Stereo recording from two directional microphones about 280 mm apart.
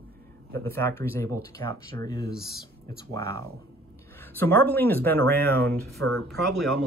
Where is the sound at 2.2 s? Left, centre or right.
Right.